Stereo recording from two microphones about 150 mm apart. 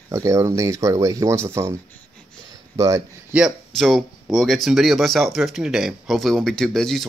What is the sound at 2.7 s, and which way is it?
Speech, 20° right (ahead or behind).